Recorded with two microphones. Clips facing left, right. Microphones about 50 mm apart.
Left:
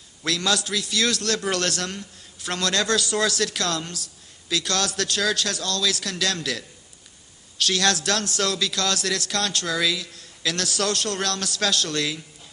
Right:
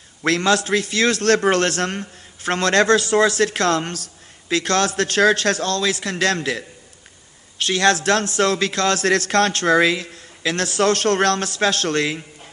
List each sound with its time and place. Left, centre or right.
0.2 s a man's voice: right